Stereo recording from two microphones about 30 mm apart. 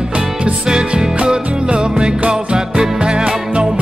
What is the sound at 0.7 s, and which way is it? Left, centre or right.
Music, right.